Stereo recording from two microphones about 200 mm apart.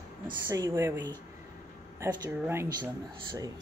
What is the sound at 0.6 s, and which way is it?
Speech, 15° right (ahead or behind).